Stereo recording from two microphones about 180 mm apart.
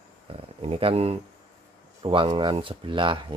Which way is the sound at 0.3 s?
30° right (ahead or behind).